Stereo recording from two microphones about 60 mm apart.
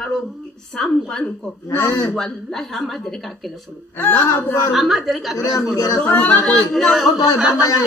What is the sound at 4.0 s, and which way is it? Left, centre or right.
Speech, left.